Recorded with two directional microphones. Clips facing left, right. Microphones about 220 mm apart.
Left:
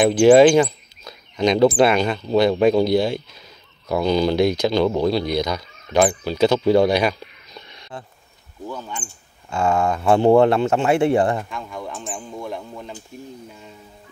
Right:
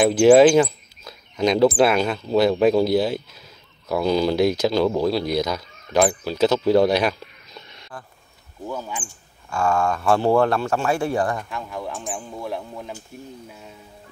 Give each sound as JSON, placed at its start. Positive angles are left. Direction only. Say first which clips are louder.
{"t": 0.0, "sound": "speech", "louder": "left 1 dB", "side_deg": 0}
{"t": 7.9, "sound": "speech", "louder": "left 3 dB", "side_deg": 25}
{"t": 8.6, "sound": "speech", "louder": "right 1 dB", "side_deg": -10}
{"t": 9.5, "sound": "speech", "louder": "left 2 dB", "side_deg": 20}
{"t": 11.4, "sound": "speech", "louder": "right 1 dB", "side_deg": 0}